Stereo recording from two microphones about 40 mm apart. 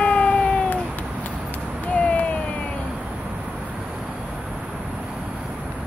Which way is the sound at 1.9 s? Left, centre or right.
Left.